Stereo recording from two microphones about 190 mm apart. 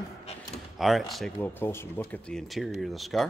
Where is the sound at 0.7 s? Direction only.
Centre (ahead or behind).